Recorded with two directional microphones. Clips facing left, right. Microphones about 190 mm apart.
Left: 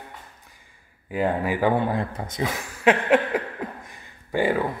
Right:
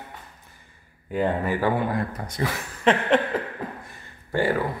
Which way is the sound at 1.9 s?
25° left (ahead or behind).